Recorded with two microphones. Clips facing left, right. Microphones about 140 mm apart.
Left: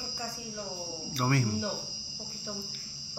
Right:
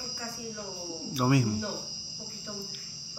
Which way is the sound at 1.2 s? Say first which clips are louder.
Right 4 dB; 10° right (ahead or behind).